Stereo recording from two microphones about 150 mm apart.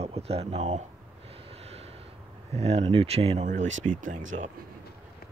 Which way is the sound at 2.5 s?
45° right (ahead or behind).